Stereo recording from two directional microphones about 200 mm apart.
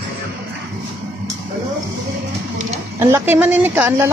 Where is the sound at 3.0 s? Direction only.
10° right (ahead or behind).